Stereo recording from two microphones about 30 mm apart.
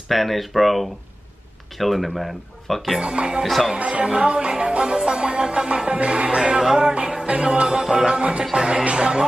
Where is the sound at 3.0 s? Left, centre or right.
Right.